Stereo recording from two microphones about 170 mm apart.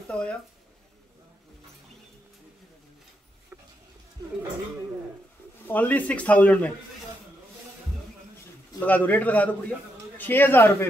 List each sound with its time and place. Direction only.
0.1 s speech: 5° left (ahead or behind)
4.2 s speech: 25° right (ahead or behind)
5.7 s a man's voice: 10° left (ahead or behind)
8.7 s a man's voice: 10° left (ahead or behind)